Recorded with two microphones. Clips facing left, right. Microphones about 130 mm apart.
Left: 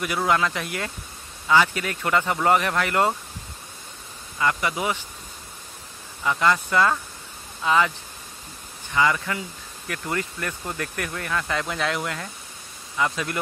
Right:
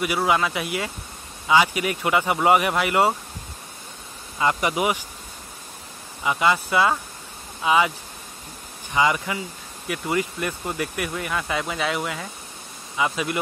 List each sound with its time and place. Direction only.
0.0 s speech: 5° right (ahead or behind)
4.4 s speech: 20° right (ahead or behind)
6.2 s speech: 10° right (ahead or behind)
8.9 s speech: 15° right (ahead or behind)